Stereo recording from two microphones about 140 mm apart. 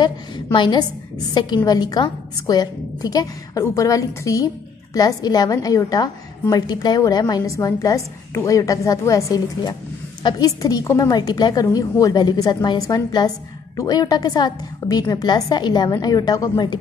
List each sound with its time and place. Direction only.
0.0 s a woman's voice: 30° left (ahead or behind)